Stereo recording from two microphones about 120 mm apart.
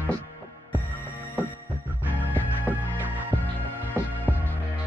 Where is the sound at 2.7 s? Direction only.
15° right (ahead or behind).